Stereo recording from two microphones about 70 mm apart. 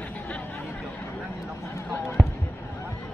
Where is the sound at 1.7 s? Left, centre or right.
Left.